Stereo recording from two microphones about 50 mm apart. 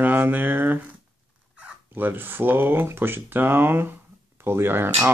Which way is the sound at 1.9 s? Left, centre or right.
Right.